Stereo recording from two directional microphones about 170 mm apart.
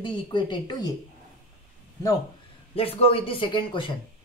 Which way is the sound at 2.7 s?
35° left (ahead or behind).